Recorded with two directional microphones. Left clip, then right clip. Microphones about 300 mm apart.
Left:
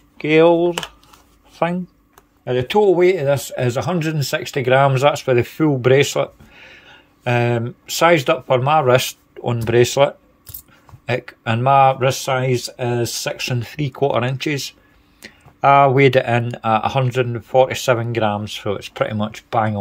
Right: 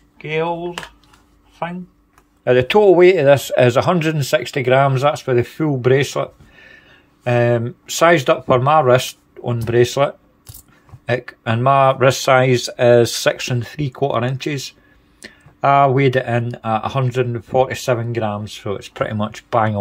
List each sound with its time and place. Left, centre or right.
0.2 s speech: centre
1.5 s a sound: centre
2.4 s speech: centre